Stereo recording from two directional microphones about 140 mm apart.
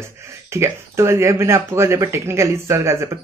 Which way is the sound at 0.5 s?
20° right (ahead or behind).